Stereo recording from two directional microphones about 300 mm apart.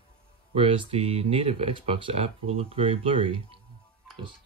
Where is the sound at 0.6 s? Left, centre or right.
Centre.